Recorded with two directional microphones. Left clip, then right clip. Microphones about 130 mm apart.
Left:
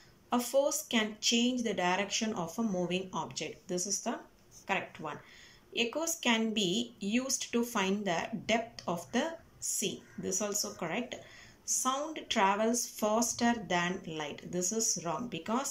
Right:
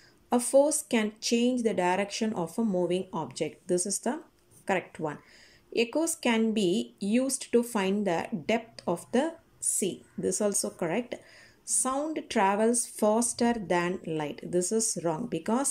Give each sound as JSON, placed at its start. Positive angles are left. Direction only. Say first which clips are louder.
{"t": 0.3, "sound": "speech", "louder": "right 6 dB", "side_deg": -45}